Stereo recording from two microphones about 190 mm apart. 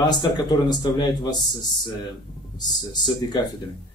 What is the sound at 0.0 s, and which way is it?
Speech, 20° left (ahead or behind).